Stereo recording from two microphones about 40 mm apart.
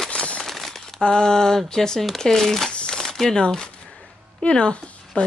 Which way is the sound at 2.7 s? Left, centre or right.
Left.